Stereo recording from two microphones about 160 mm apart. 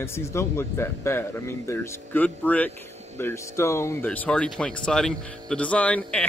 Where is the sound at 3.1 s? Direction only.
15° left (ahead or behind).